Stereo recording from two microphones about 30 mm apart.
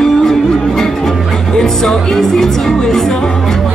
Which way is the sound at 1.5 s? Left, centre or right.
Centre.